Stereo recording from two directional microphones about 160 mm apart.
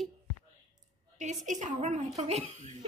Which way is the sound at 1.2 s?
50° right (ahead or behind).